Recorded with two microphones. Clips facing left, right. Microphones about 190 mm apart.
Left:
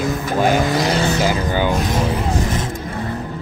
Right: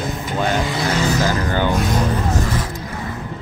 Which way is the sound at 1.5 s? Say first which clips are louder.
Left 1 dB; 10° left (ahead or behind).